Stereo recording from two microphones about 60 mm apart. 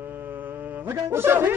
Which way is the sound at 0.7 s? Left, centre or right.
Right.